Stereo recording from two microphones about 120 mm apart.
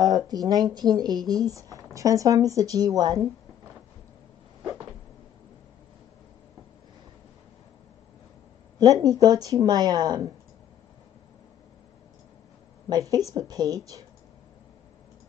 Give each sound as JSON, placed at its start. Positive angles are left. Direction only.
{"t": 0.3, "sound": "a woman's voice", "side_deg": -35}
{"t": 8.7, "sound": "speech", "side_deg": -30}
{"t": 12.9, "sound": "a woman's voice", "side_deg": -30}